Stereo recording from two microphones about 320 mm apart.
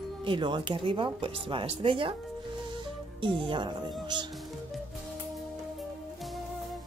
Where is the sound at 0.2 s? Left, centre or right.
Centre.